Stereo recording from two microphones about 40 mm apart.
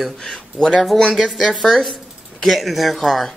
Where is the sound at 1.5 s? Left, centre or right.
Centre.